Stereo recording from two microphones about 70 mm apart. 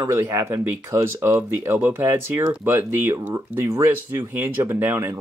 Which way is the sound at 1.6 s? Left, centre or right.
Right.